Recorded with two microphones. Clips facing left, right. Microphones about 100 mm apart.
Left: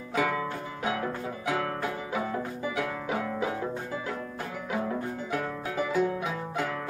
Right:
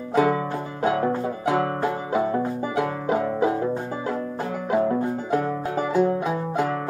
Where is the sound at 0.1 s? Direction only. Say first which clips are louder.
Right 8 dB; 35° right (ahead or behind).